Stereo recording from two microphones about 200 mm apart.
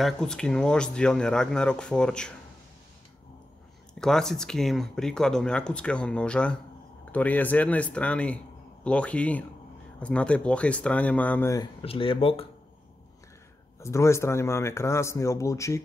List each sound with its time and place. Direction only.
0.0 s speech: 5° left (ahead or behind)
4.0 s speech: centre (ahead or behind)
11.8 s speech: 30° left (ahead or behind)
13.7 s speech: 15° left (ahead or behind)